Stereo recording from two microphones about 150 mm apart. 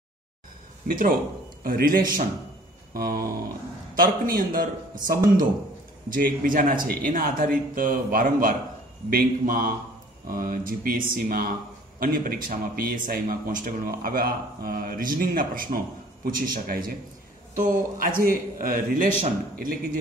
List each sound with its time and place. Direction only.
0.8 s a man's voice: 65° right (ahead or behind)
2.9 s a sound: 80° right
3.9 s speech: 70° right (ahead or behind)
17.6 s speech: 65° right (ahead or behind)